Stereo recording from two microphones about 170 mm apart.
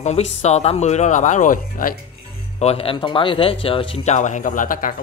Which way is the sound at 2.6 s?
35° left (ahead or behind).